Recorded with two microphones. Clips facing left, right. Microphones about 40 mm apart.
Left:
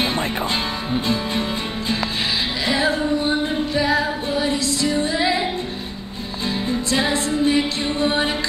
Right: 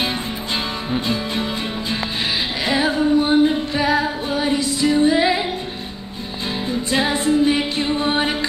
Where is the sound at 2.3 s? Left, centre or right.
Right.